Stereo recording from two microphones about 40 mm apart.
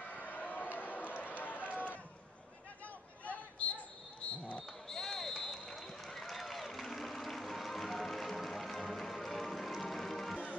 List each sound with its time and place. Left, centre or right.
0.1 s run: left
3.3 s basketball bounce: left
4.8 s basketball bounce: centre
5.4 s a sound: centre